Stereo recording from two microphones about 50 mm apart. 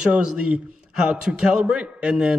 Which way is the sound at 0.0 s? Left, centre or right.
Right.